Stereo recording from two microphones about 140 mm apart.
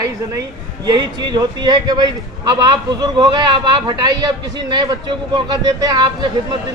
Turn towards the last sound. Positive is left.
turn(degrees=-30)  # may be behind; listen again after turning